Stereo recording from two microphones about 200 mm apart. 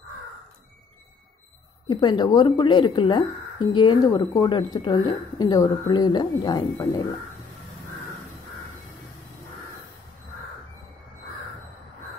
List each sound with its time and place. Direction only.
1.9 s speech: 20° left (ahead or behind)